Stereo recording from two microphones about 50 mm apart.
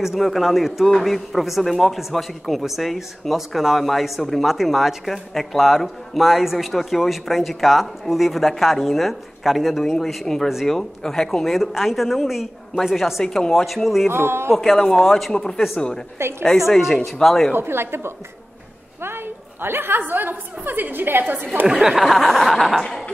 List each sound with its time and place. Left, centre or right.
0.0 s speech: centre
9.9 s speech: centre
14.1 s a man's voice: right
14.5 s speech: centre
15.3 s speech: centre
16.2 s a man's voice: right
16.5 s speech: centre
17.5 s a woman's voice: right
21.6 s speech: centre
21.9 s speech: centre